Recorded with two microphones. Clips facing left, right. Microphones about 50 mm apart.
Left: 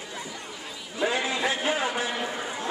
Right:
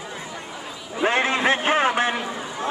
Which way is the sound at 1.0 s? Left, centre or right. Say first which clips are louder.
Right 6 dB; right.